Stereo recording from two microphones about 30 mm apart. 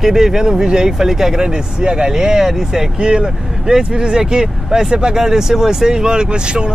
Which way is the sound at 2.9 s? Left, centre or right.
Right.